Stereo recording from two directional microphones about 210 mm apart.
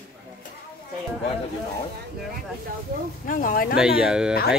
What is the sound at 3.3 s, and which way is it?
Speech, 40° left (ahead or behind).